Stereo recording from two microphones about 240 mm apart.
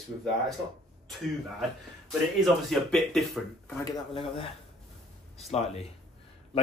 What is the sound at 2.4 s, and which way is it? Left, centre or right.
Speech, centre.